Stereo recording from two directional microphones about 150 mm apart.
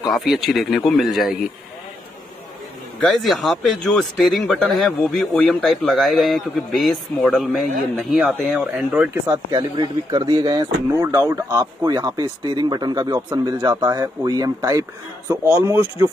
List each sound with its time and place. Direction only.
0.1 s speech: centre (ahead or behind)
3.0 s speech: centre (ahead or behind)
8.5 s speech: 10° right (ahead or behind)
9.3 s speech: 30° right (ahead or behind)